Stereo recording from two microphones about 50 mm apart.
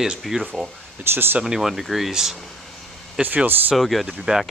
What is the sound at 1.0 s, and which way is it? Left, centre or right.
Speech, right.